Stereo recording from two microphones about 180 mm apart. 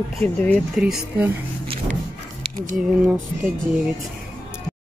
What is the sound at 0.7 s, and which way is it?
Speech, 5° right (ahead or behind).